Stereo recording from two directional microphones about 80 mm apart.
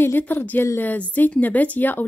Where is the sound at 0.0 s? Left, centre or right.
Left.